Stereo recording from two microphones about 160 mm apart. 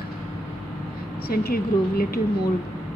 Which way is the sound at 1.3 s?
70° left (ahead or behind).